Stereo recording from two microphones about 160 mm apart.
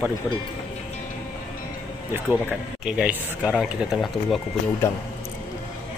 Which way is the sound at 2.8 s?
5° right (ahead or behind).